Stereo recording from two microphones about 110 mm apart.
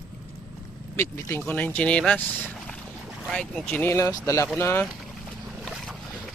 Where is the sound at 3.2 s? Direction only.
Centre (ahead or behind).